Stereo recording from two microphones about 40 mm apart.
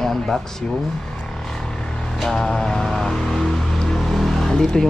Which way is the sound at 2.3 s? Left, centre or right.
Centre.